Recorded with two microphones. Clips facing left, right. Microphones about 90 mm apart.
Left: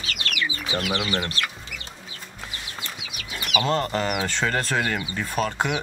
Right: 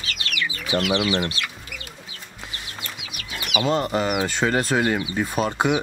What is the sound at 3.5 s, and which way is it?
Speech, 5° right (ahead or behind).